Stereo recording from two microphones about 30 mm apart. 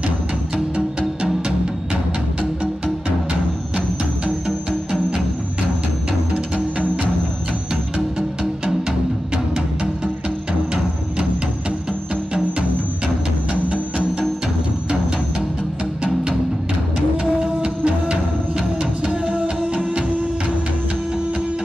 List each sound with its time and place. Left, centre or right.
13.5 s music: right
17.2 s music: right